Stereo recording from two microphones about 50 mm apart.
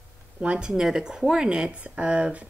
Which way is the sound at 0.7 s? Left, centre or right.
Centre.